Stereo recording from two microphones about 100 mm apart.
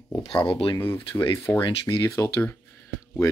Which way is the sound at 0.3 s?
55° left (ahead or behind).